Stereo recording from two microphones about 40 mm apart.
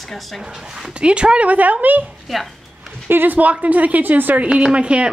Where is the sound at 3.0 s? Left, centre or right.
Right.